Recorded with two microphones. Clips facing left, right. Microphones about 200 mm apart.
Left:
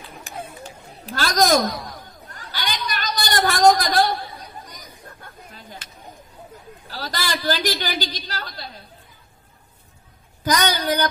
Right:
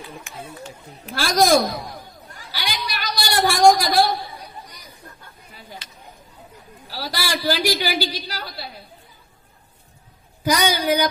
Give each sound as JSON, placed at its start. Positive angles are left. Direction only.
{"t": 0.3, "sound": "speech", "side_deg": 35}
{"t": 1.1, "sound": "a sound", "side_deg": -10}
{"t": 6.9, "sound": "a woman's voice", "side_deg": -10}
{"t": 10.4, "sound": "a woman's voice", "side_deg": -10}